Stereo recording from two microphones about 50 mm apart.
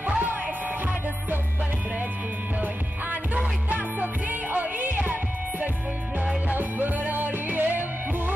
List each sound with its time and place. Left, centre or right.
0.0 s music: right
2.6 s music: right